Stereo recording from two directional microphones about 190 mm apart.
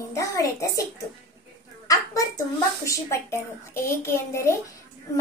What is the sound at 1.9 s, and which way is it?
A child's voice, 15° left (ahead or behind).